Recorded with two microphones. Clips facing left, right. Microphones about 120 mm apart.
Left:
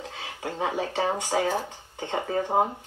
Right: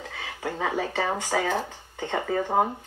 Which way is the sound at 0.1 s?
15° left (ahead or behind).